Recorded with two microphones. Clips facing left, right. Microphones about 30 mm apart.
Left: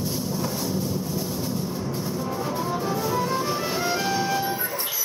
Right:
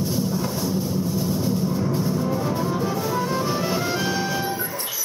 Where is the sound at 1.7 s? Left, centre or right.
Right.